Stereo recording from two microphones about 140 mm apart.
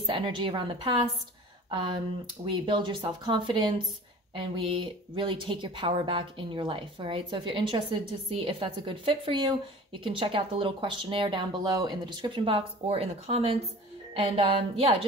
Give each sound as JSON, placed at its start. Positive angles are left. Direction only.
{"t": 0.0, "sound": "speech", "side_deg": -35}